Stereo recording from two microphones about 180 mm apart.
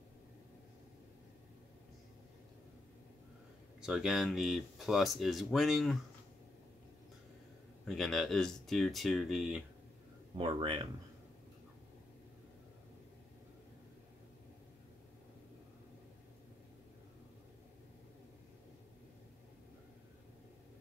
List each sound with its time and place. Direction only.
3.8 s speech: 5° right (ahead or behind)
7.8 s speech: centre (ahead or behind)
10.3 s speech: 30° right (ahead or behind)